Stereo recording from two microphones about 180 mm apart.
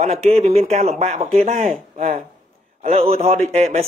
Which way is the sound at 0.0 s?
35° right (ahead or behind).